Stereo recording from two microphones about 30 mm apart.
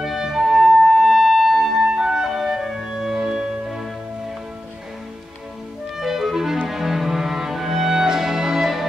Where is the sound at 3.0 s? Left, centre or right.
Right.